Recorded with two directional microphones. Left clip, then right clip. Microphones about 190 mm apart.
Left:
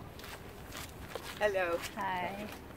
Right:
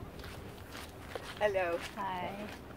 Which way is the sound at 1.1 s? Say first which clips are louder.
Even; 40° left (ahead or behind).